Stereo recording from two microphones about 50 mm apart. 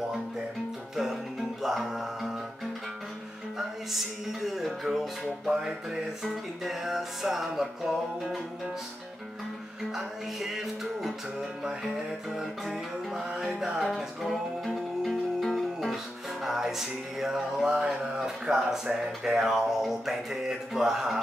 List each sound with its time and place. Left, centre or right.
0.9 s music: centre
3.5 s music: centre
9.8 s music: centre
13.1 s music: centre